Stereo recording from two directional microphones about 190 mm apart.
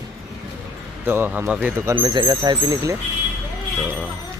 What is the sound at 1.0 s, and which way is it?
Speech, 10° right (ahead or behind).